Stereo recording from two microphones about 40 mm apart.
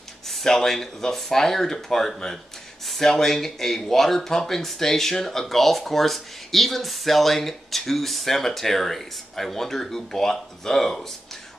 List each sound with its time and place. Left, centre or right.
0.3 s speech: centre